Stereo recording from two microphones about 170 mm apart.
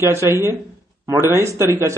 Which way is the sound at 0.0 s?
15° right (ahead or behind).